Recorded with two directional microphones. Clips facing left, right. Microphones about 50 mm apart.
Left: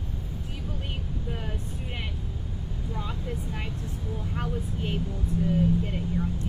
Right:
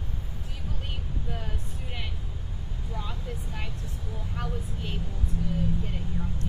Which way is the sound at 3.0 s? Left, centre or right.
Centre.